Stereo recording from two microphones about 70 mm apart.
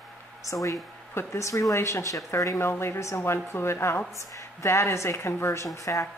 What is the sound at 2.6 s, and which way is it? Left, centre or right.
A woman's voice, left.